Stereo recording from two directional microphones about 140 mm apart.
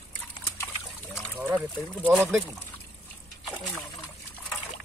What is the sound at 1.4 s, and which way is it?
Speech, 10° right (ahead or behind).